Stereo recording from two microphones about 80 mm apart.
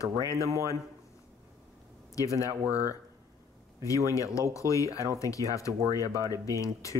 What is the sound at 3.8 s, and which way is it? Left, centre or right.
Speech, left.